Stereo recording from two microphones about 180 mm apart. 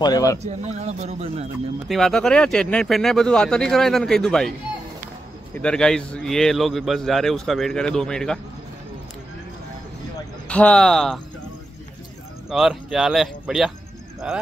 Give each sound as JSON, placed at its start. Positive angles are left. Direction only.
{"t": 0.0, "sound": "speech", "side_deg": 20}
{"t": 0.4, "sound": "speech", "side_deg": -40}
{"t": 1.9, "sound": "a man's voice", "side_deg": 0}
{"t": 5.5, "sound": "a man's voice", "side_deg": 5}
{"t": 10.5, "sound": "a man's voice", "side_deg": 5}
{"t": 12.4, "sound": "a man's voice", "side_deg": -5}